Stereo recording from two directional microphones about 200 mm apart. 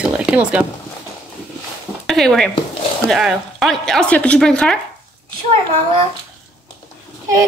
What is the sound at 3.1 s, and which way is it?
Speech, centre (ahead or behind).